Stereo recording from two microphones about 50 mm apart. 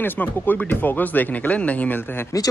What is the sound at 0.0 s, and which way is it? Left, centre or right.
Speech, left.